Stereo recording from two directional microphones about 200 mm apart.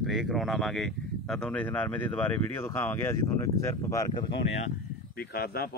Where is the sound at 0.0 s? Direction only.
Centre (ahead or behind); by 4.3 s 15° left (ahead or behind).